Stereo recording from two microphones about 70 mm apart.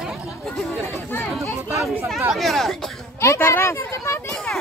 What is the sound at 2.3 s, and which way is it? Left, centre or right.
Speech, centre.